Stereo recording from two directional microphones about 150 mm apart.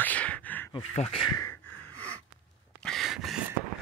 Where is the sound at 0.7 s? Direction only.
40° left (ahead or behind).